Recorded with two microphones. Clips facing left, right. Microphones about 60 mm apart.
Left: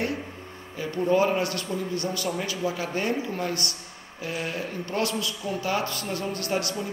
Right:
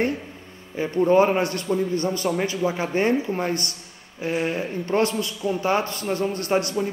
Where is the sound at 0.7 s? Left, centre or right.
Right.